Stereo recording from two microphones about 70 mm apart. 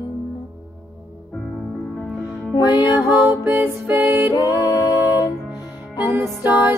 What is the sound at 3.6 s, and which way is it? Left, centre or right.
Music, right.